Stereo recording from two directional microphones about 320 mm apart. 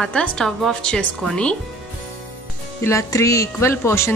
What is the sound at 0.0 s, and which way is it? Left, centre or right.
A woman's voice, centre.